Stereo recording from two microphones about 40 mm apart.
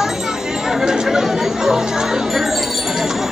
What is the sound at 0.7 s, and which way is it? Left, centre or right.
Music, centre.